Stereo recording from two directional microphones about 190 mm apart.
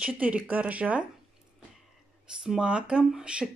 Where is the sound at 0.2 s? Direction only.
5° right (ahead or behind).